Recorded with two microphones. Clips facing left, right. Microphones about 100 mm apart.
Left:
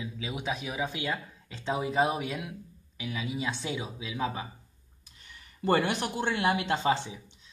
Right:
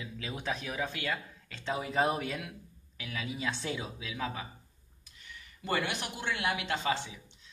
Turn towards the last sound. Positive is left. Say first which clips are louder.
# left 5 dB
turn(degrees=25)  # may be behind; listen again after turning